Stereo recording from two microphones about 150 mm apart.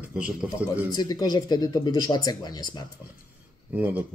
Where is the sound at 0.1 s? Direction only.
5° right (ahead or behind).